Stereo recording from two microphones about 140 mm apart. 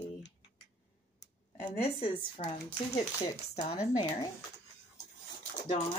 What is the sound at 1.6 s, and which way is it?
Speech, 45° left (ahead or behind).